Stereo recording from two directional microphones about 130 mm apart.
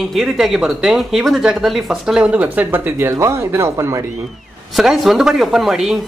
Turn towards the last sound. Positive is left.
turn(degrees=-5)  # may be behind; listen again after turning